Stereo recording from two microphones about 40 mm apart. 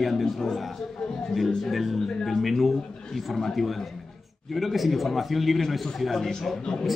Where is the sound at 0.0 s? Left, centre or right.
Centre.